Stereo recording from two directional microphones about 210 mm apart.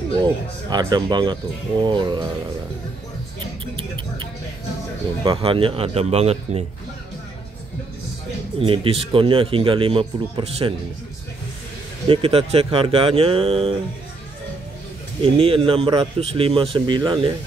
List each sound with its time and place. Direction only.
0.2 s speech: 20° right (ahead or behind)
5.2 s speech: 25° right (ahead or behind)
8.5 s speech: 25° right (ahead or behind)
12.1 s speech: 25° right (ahead or behind)
15.2 s speech: 25° right (ahead or behind)